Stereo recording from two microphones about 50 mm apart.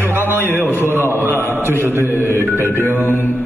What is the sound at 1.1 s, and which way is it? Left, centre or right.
Chant, right.